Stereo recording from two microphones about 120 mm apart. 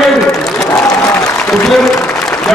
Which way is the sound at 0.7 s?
20° left (ahead or behind).